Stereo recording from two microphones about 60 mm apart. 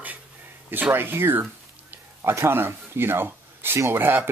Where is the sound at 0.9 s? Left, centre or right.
Right.